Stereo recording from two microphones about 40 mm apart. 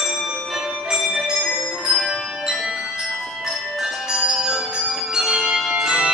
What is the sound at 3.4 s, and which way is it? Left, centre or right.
Music, centre.